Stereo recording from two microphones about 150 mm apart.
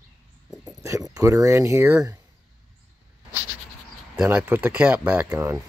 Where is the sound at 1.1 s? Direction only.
20° right (ahead or behind).